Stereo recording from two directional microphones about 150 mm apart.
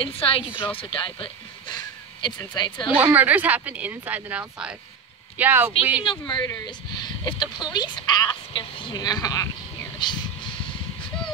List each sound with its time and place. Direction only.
0.0 s a woman's voice: 35° left (ahead or behind)
3.0 s speech: 10° right (ahead or behind)
6.0 s speech: 30° left (ahead or behind)